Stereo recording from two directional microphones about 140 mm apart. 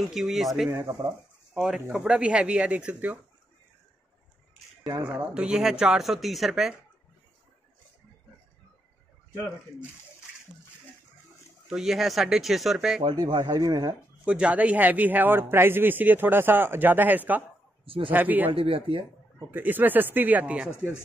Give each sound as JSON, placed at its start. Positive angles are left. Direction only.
{"t": 0.0, "sound": "speech", "side_deg": 0}
{"t": 0.7, "sound": "speech", "side_deg": -20}
{"t": 1.5, "sound": "a man's voice", "side_deg": -5}
{"t": 5.0, "sound": "speech", "side_deg": -5}
{"t": 9.3, "sound": "speech", "side_deg": 15}
{"t": 11.6, "sound": "speech", "side_deg": -5}
{"t": 13.1, "sound": "speech", "side_deg": -30}
{"t": 14.2, "sound": "a man's voice", "side_deg": -5}
{"t": 17.8, "sound": "a man's voice", "side_deg": -40}
{"t": 18.1, "sound": "a man's voice", "side_deg": -10}
{"t": 18.5, "sound": "speech", "side_deg": -40}
{"t": 19.5, "sound": "a man's voice", "side_deg": -15}